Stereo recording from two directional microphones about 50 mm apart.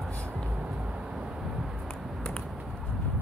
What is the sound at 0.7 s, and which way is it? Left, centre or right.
Vehicle, right.